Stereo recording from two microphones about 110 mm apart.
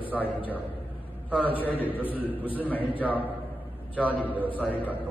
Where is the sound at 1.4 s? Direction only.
15° left (ahead or behind).